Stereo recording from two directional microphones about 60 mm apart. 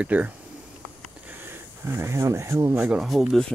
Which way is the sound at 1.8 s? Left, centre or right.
Right.